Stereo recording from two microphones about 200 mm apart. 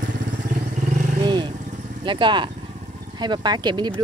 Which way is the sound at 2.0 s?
25° right (ahead or behind).